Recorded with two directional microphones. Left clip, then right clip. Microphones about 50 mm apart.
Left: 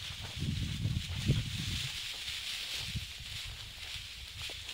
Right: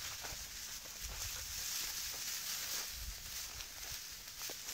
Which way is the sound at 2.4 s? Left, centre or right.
Right.